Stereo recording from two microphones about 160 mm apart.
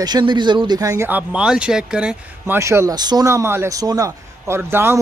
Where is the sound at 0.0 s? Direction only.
30° right (ahead or behind).